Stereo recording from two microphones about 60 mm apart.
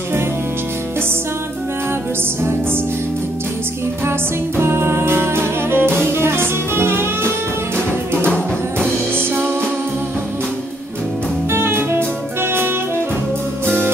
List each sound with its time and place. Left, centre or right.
4.6 s music: right
9.3 s music: right
11.5 s music: right